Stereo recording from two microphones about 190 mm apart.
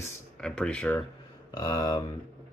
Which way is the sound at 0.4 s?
5° left (ahead or behind).